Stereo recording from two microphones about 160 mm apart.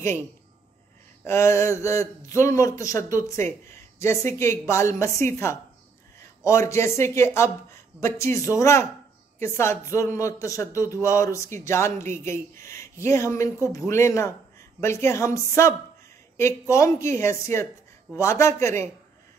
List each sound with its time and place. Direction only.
1.2 s speech: 15° left (ahead or behind)